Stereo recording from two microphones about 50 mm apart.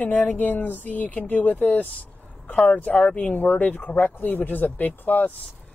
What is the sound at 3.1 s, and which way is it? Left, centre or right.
Speech, left.